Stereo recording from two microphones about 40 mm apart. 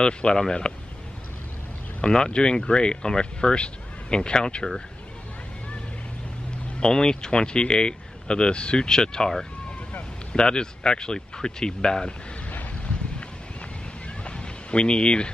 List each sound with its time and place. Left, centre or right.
0.0 s speech: centre
2.0 s speech: left
6.8 s speech: centre
10.3 s speech: centre
12.4 s boat: left
14.2 s a sound: left